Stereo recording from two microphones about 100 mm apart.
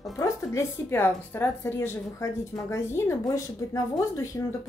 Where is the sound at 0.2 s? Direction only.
30° left (ahead or behind).